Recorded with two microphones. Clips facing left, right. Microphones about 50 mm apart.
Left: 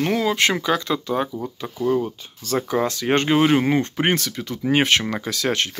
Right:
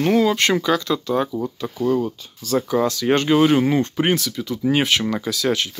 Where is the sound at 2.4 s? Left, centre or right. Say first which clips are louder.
Right 2 dB; left.